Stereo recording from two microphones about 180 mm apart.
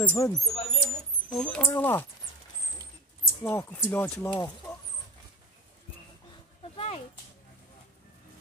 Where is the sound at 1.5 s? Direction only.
10° left (ahead or behind).